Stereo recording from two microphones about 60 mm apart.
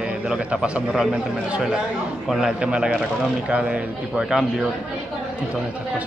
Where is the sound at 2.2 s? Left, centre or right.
Centre.